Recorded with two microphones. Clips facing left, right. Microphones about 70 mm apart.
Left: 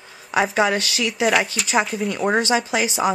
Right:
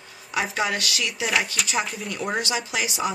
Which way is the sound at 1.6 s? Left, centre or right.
Centre.